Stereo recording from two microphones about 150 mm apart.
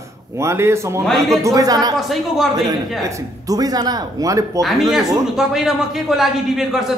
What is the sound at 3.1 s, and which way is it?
A man's voice, 20° right (ahead or behind).